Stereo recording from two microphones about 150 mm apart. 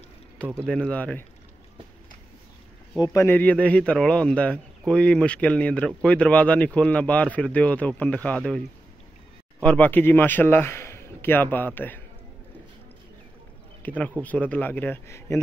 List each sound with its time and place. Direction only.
0.7 s a man's voice: 10° left (ahead or behind)
3.0 s speech: 25° left (ahead or behind)
3.3 s a man's voice: 10° left (ahead or behind)
13.8 s a man's voice: 10° left (ahead or behind)